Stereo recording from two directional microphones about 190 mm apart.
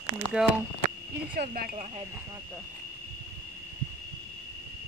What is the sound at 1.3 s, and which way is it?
Speech, 50° right (ahead or behind).